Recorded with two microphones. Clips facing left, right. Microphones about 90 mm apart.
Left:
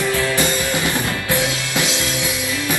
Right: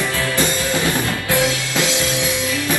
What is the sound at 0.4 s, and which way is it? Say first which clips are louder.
Music: even; 20° left (ahead or behind).